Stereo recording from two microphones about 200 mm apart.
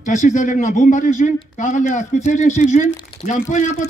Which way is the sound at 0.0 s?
40° left (ahead or behind).